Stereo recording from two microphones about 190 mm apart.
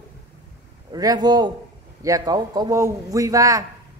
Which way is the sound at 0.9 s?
20° right (ahead or behind).